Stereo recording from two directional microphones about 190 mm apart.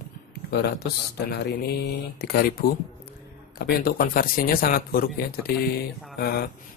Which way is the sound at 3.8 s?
50° left (ahead or behind).